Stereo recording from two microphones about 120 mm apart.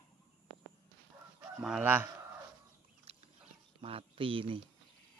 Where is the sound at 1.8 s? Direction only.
15° right (ahead or behind).